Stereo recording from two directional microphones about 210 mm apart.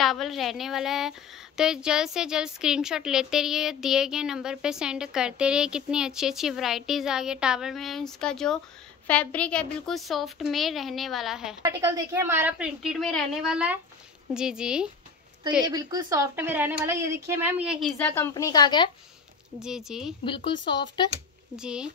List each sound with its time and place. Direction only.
0.0 s a woman's voice: centre (ahead or behind)
11.6 s a woman's voice: 15° right (ahead or behind)
15.6 s a woman's voice: 20° right (ahead or behind); by 18.9 s 20° left (ahead or behind)
19.6 s a woman's voice: centre (ahead or behind)
20.2 s speech: 25° left (ahead or behind)
21.5 s a woman's voice: 5° right (ahead or behind)